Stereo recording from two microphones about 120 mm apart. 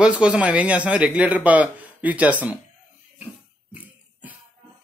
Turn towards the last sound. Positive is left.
turn(degrees=-15)  # may be behind; listen again after turning